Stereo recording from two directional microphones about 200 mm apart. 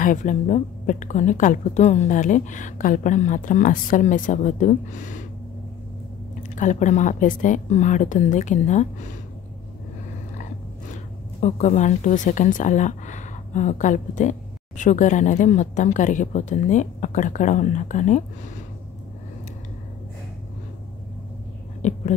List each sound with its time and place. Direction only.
0.0 s speech: 40° left (ahead or behind)
6.5 s speech: 40° left (ahead or behind)
11.4 s speech: 35° left (ahead or behind)
21.8 s speech: 35° left (ahead or behind)